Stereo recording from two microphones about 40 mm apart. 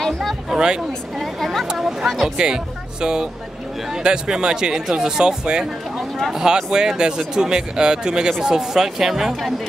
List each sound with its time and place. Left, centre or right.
0.0 s a sound: centre
0.5 s speech: centre
1.1 s a woman's voice: centre
2.3 s speech: right
5.9 s a sound: centre
6.4 s speech: centre